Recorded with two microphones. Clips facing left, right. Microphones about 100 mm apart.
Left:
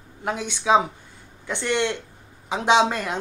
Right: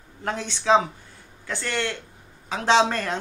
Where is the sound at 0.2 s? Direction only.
10° left (ahead or behind).